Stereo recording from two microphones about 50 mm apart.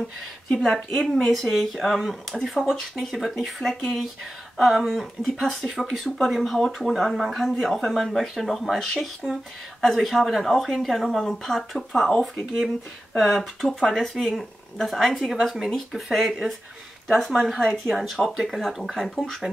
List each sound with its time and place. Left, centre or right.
1.2 s speech: centre
6.9 s speech: centre